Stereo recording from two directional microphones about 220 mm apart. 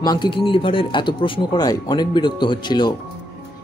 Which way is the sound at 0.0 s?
20° left (ahead or behind).